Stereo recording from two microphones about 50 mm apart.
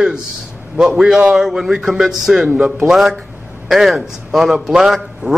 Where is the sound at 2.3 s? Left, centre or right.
Centre.